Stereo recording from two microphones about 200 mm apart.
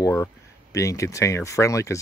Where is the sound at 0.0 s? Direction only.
15° left (ahead or behind).